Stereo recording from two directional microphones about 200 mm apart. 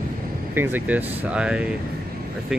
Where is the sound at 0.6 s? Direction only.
10° right (ahead or behind).